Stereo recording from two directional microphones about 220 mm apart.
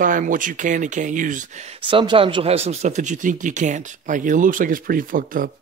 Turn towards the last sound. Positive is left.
turn(degrees=-40)  # may be behind; listen again after turning